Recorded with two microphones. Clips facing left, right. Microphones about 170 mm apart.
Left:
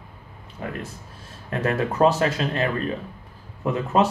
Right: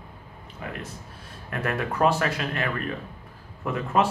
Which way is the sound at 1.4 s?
25° left (ahead or behind).